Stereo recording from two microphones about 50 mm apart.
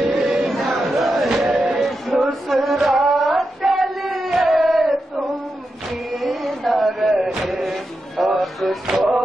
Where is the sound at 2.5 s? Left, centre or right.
Centre.